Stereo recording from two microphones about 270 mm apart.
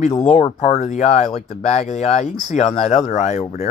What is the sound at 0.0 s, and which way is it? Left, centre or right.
Speech, left.